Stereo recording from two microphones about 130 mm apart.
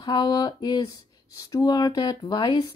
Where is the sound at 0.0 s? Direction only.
30° left (ahead or behind).